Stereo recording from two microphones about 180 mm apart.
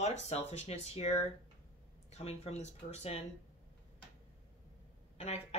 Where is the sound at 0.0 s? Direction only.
35° left (ahead or behind).